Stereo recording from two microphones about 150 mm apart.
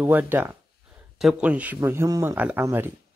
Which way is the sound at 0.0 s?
10° right (ahead or behind).